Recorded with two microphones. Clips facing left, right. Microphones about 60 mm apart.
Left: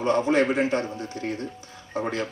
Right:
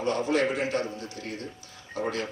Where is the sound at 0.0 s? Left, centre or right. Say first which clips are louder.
Left 4 dB; left.